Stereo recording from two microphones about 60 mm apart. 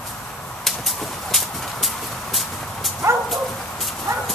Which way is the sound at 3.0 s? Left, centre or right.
Right.